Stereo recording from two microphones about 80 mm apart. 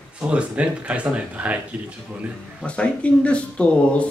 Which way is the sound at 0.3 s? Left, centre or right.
Centre.